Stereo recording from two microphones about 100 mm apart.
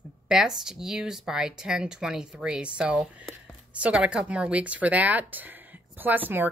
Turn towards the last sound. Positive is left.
turn(degrees=-20)  # may be behind; listen again after turning